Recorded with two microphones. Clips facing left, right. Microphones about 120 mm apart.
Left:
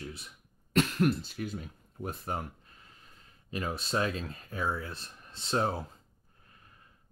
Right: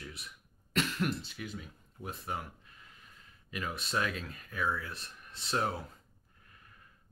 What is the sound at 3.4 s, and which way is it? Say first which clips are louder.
Speech: left 4 dB; 30° left (ahead or behind).